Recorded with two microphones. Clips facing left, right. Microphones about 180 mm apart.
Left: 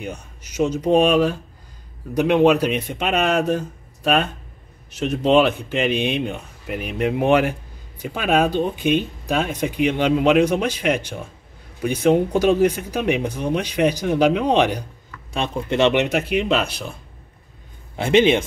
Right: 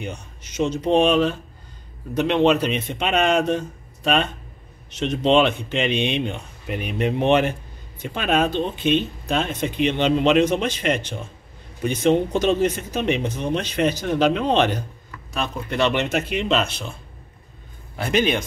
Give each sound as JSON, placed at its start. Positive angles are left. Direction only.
{"t": 0.0, "sound": "speech", "side_deg": 10}
{"t": 15.3, "sound": "speech", "side_deg": 25}
{"t": 17.9, "sound": "speech", "side_deg": 25}